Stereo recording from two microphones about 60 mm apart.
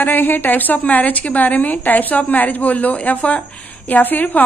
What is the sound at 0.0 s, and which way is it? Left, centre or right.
A woman's voice, left.